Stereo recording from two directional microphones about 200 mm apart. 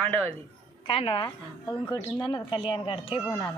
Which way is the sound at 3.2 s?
15° left (ahead or behind).